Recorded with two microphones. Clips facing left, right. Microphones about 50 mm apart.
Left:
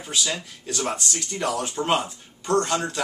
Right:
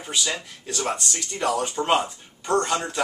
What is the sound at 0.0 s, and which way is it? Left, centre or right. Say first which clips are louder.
Speech: even; centre.